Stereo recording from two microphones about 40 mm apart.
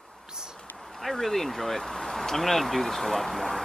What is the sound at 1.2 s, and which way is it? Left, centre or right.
Speech, centre.